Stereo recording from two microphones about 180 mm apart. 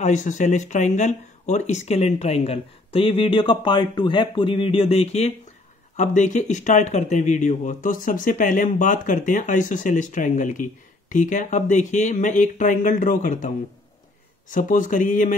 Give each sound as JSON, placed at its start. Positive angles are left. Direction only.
{"t": 0.0, "sound": "speech", "side_deg": 40}
{"t": 14.5, "sound": "speech", "side_deg": 45}